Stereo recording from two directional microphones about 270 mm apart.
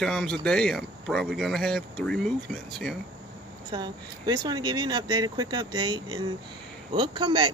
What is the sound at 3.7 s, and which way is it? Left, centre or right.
Speech, centre.